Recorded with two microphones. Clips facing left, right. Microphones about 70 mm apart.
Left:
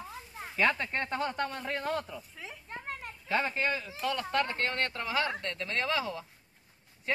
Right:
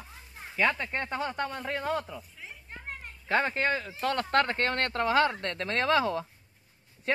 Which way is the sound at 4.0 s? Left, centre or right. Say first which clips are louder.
Right 4 dB; right.